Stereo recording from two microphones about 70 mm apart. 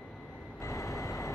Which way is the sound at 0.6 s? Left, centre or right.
Left.